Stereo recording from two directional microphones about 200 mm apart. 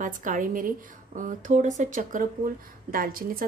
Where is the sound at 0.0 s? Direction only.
40° right (ahead or behind).